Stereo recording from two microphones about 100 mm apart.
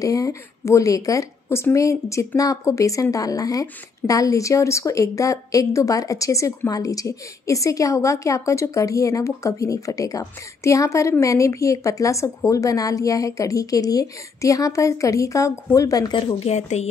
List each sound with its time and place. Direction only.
0.0 s a woman's voice: 35° left (ahead or behind)
16.3 s speech: 90° left